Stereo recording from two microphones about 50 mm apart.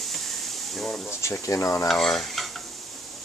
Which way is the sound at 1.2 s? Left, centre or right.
Left.